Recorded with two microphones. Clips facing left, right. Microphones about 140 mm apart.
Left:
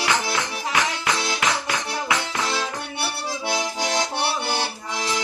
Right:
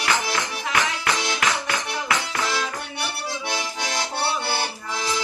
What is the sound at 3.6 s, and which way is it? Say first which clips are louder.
Accordion: left 4 dB; 20° left (ahead or behind).